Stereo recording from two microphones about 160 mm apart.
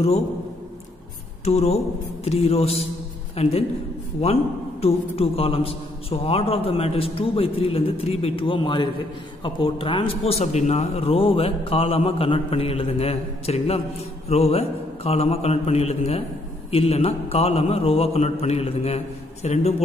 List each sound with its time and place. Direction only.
1.4 s a man's voice: 40° left (ahead or behind)
4.8 s a man's voice: 40° left (ahead or behind)